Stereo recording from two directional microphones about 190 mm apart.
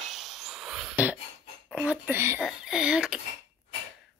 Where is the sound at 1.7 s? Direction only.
5° right (ahead or behind).